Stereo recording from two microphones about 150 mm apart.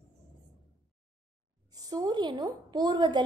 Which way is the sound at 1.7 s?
25° right (ahead or behind).